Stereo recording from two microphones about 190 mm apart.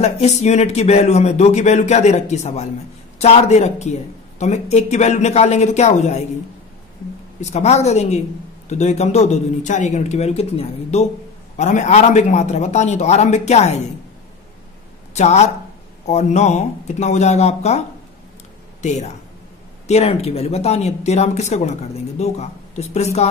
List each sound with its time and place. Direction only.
0.0 s speech: 35° left (ahead or behind)
7.3 s speech: 35° left (ahead or behind)
15.1 s speech: 35° left (ahead or behind)